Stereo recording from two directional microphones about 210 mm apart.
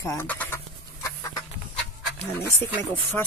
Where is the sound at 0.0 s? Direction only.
15° left (ahead or behind).